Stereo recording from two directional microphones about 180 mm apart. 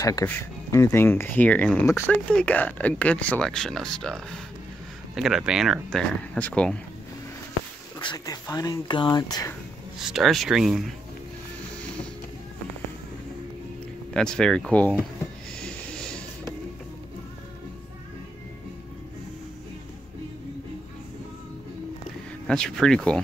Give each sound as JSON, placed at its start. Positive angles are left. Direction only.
{"t": 0.0, "sound": "speech", "side_deg": 15}
{"t": 8.0, "sound": "speech", "side_deg": 20}
{"t": 9.9, "sound": "speech", "side_deg": 0}
{"t": 14.1, "sound": "speech", "side_deg": 5}
{"t": 15.6, "sound": "a sound", "side_deg": 5}
{"t": 22.5, "sound": "speech", "side_deg": 5}